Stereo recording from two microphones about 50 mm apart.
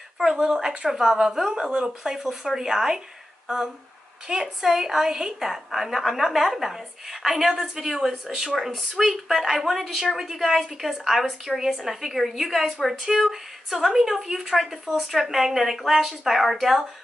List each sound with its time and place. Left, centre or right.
0.2 s a woman's voice: centre